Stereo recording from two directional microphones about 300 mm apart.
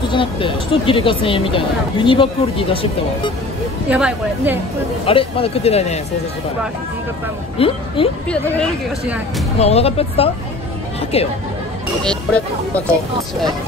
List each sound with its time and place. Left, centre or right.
0.1 s speech: centre
3.9 s speech: centre
5.0 s speech: centre
7.5 s speech: centre
9.6 s speech: left
12.0 s speech: centre